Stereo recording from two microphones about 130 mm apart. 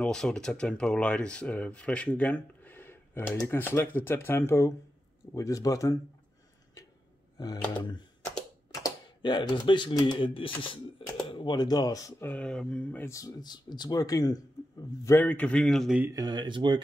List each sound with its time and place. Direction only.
0.0 s speech: 5° left (ahead or behind); by 5.9 s 25° left (ahead or behind)
7.3 s speech: 30° left (ahead or behind)
12.3 s speech: 10° left (ahead or behind); by 15.1 s 30° left (ahead or behind)
15.1 s speech: 10° left (ahead or behind)
16.1 s speech: 30° right (ahead or behind)